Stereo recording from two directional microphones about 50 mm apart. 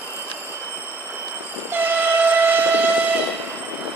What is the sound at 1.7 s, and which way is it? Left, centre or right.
Train, right.